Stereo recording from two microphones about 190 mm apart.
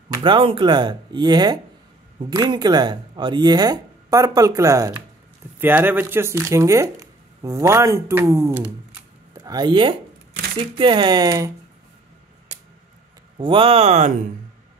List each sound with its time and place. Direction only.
0.1 s speech: 25° right (ahead or behind)
13.4 s speech: 25° right (ahead or behind)